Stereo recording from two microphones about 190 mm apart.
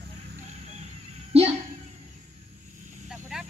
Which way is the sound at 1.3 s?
30° right (ahead or behind).